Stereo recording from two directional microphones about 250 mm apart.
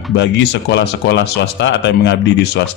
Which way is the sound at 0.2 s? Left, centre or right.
Left.